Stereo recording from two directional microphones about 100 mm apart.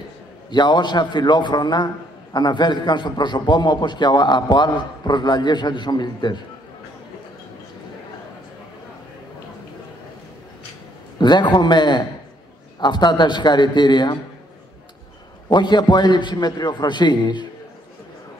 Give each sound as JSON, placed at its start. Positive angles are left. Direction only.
{"t": 0.5, "sound": "a man's voice", "side_deg": 50}
{"t": 11.1, "sound": "a man's voice", "side_deg": 50}
{"t": 15.4, "sound": "a man's voice", "side_deg": 45}